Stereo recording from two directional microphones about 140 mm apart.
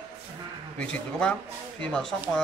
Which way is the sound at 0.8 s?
5° left (ahead or behind).